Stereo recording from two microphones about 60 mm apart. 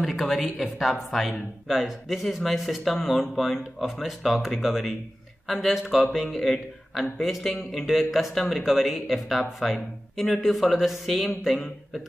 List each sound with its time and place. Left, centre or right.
0.2 s speech: centre